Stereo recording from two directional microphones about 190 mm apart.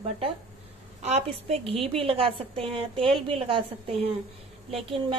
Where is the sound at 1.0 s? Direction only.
35° right (ahead or behind).